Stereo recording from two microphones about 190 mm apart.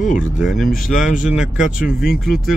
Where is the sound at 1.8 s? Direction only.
Centre (ahead or behind).